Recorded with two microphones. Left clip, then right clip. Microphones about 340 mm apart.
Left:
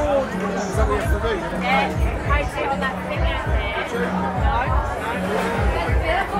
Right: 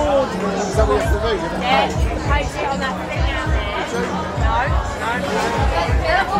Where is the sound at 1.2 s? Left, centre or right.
Right.